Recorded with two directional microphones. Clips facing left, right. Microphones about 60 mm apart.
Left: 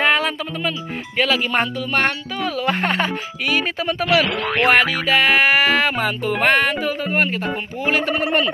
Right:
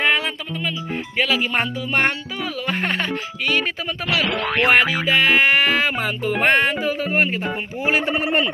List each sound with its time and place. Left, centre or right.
0.0 s speech: centre
1.9 s speech: centre
2.4 s speech: centre